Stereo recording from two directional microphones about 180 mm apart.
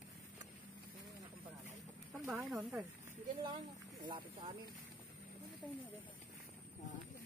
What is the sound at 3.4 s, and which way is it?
Speech, 25° right (ahead or behind).